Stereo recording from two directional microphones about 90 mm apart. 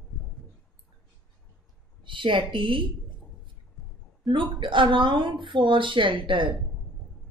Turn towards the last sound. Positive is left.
turn(degrees=-65)  # may be behind; listen again after turning